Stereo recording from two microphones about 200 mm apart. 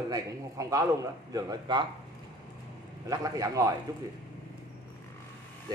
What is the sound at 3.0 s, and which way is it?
Speech, 20° right (ahead or behind).